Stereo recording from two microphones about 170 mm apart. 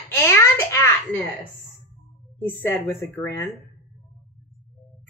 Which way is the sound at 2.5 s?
10° left (ahead or behind).